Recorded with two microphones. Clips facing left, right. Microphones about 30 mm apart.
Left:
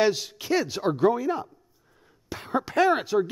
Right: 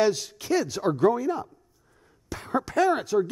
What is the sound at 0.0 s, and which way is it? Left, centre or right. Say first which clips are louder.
A man's voice: even; centre.